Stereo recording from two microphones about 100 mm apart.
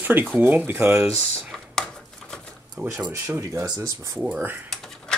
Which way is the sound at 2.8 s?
20° right (ahead or behind).